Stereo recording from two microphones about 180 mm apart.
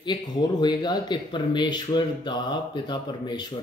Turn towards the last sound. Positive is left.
turn(degrees=25)  # may be behind; listen again after turning